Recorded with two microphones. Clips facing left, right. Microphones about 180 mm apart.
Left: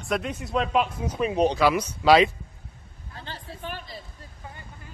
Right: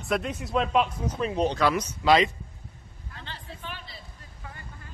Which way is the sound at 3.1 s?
40° left (ahead or behind).